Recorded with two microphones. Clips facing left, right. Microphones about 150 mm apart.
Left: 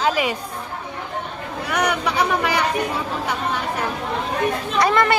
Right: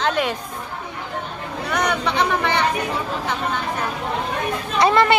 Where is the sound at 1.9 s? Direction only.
10° left (ahead or behind).